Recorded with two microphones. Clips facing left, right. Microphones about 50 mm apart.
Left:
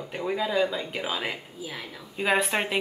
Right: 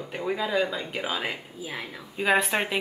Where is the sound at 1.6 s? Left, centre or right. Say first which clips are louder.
Right 2 dB; centre.